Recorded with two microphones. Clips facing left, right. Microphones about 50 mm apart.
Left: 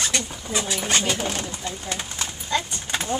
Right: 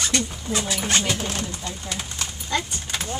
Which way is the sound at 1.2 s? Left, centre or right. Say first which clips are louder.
Left 1 dB; centre.